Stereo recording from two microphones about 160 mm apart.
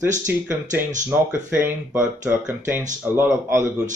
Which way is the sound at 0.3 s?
15° right (ahead or behind).